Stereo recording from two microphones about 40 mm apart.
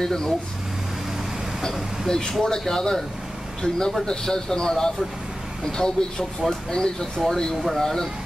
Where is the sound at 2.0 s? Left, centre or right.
Centre.